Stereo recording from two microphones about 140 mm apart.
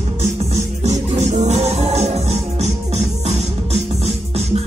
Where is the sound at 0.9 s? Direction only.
55° right (ahead or behind).